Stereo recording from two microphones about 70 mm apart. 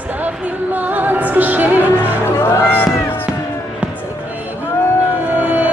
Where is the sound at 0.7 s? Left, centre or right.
Right.